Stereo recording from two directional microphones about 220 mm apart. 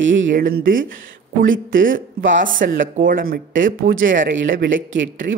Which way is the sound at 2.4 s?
35° right (ahead or behind).